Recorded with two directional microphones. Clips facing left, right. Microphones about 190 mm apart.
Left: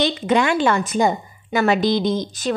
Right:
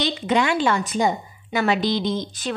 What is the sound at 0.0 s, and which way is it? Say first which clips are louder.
A woman's voice: left 3 dB; 50° left (ahead or behind).